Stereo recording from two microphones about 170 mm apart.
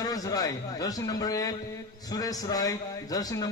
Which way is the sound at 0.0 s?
20° left (ahead or behind).